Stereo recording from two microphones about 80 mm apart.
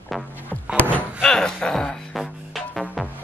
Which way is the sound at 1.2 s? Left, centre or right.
Centre.